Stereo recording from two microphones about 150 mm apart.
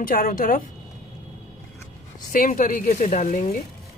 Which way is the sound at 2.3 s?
60° left (ahead or behind).